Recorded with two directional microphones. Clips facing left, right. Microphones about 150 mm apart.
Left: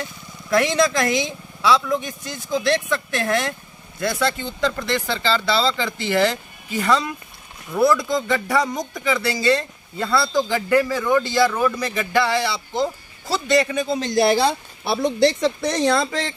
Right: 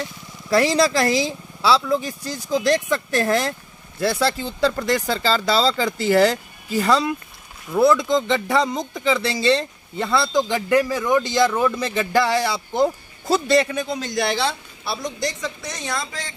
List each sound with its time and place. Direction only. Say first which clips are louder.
0.5 s speech: right 1 dB; 35° right (ahead or behind)
7.7 s speech: right 2 dB; 20° right (ahead or behind); by 13.4 s 45° right (ahead or behind)
13.7 s speech: left 3 dB; 5° left (ahead or behind)
14.4 s speech: left 4 dB; 55° left (ahead or behind)